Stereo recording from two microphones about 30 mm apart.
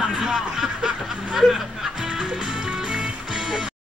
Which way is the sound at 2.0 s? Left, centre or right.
Right.